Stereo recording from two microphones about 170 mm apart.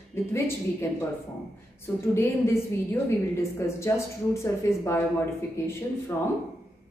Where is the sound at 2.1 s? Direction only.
15° left (ahead or behind).